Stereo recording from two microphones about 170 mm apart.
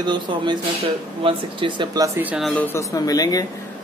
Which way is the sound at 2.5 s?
15° left (ahead or behind).